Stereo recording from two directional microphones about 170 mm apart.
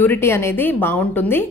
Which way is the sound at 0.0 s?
15° left (ahead or behind).